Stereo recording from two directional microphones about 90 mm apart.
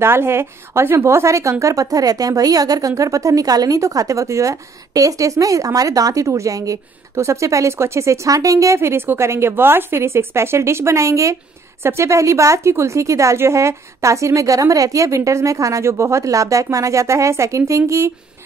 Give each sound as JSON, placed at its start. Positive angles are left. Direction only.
{"t": 0.0, "sound": "speech", "side_deg": -25}